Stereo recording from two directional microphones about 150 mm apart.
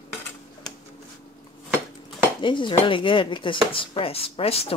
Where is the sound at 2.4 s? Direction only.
35° left (ahead or behind).